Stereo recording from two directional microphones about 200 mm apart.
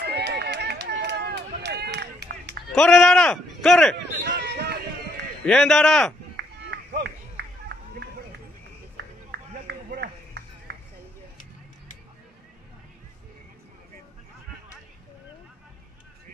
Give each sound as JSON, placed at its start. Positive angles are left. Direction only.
{"t": 0.0, "sound": "run", "side_deg": -55}
{"t": 2.7, "sound": "speech", "side_deg": 0}
{"t": 4.2, "sound": "a sound", "side_deg": -55}
{"t": 5.4, "sound": "speech", "side_deg": 5}
{"t": 6.3, "sound": "a sound", "side_deg": -55}
{"t": 8.9, "sound": "run", "side_deg": -55}